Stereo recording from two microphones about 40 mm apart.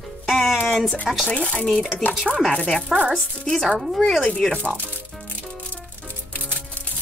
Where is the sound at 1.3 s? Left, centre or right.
Left.